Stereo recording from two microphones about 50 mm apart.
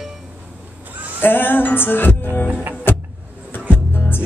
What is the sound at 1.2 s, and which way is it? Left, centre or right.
Music, left.